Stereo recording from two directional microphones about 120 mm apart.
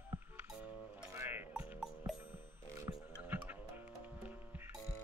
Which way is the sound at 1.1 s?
20° right (ahead or behind).